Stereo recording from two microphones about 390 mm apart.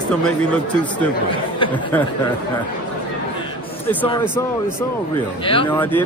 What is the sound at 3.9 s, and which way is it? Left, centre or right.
Speech, centre.